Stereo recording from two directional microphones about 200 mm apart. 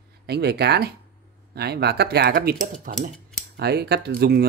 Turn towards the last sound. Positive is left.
turn(degrees=-50)  # may be behind; listen again after turning